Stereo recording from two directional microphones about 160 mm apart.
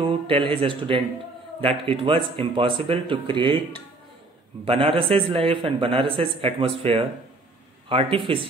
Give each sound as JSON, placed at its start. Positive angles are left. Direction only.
{"t": 0.0, "sound": "a man's voice", "side_deg": -35}
{"t": 4.6, "sound": "a man's voice", "side_deg": -35}